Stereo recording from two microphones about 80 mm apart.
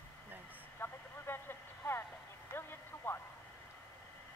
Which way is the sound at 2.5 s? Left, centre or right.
Left.